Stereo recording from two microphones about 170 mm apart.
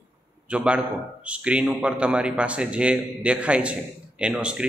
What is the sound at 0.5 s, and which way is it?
A man's voice, 5° right (ahead or behind).